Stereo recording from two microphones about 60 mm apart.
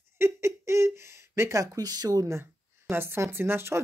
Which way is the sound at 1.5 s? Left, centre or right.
Right.